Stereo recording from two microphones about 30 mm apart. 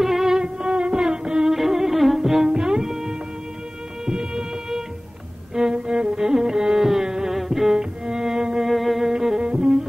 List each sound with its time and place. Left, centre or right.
0.0 s music: centre
0.6 s music: right
1.0 s music: right
1.5 s music: centre
2.4 s music: right
6.8 s music: centre
7.1 s music: right
7.3 s music: centre
7.7 s music: right
8.6 s music: centre
9.1 s music: centre
9.4 s music: right